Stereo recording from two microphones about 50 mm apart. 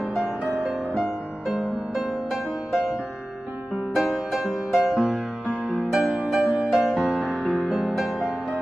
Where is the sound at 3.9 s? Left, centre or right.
Centre.